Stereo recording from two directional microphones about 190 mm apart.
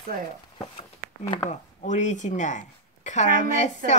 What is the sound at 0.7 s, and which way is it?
Speech, 30° left (ahead or behind).